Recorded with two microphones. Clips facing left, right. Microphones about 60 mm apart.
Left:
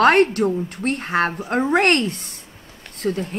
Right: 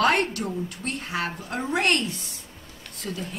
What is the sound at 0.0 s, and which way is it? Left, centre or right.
A woman's voice, left.